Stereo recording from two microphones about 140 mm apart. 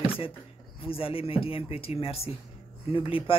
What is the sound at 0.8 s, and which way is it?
Speech, 40° left (ahead or behind).